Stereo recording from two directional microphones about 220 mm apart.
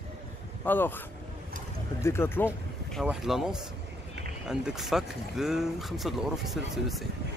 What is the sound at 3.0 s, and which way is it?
Speech, centre (ahead or behind).